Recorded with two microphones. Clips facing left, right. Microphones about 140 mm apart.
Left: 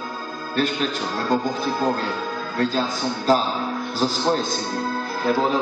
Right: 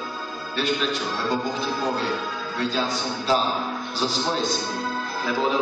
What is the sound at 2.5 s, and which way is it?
Speech, 45° left (ahead or behind).